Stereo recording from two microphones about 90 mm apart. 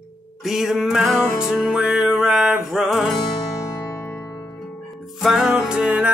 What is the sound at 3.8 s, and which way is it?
Music, 25° left (ahead or behind).